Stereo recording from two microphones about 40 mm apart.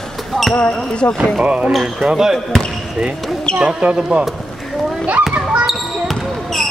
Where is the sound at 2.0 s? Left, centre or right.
Centre.